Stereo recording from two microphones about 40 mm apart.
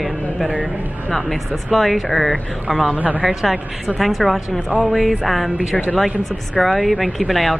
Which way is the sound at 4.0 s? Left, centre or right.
Centre.